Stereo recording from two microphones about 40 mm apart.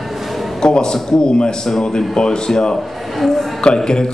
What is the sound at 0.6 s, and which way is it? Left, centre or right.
A man's voice, centre.